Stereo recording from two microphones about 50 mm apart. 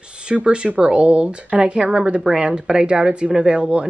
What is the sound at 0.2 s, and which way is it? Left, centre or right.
Speech, centre.